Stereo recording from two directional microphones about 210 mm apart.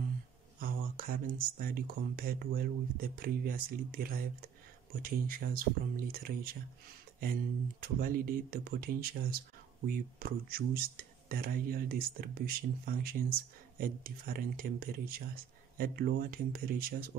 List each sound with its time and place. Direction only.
0.6 s speech: 40° right (ahead or behind)
7.8 s speech: 45° right (ahead or behind)